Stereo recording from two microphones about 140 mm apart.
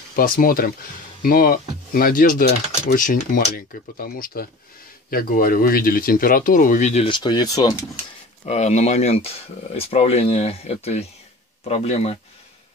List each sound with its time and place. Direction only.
0.1 s speech: 90° left
2.9 s speech: 70° left (ahead or behind); by 7.1 s 55° left (ahead or behind)
7.1 s speech: 35° left (ahead or behind)
8.5 s speech: 55° left (ahead or behind)